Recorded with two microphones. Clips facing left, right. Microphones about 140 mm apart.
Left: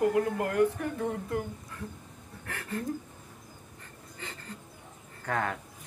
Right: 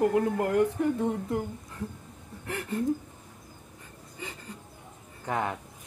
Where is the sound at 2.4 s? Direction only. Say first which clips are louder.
Right 5 dB; 20° right (ahead or behind).